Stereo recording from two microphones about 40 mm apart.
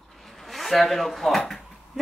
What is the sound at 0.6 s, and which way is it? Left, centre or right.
Speech, centre.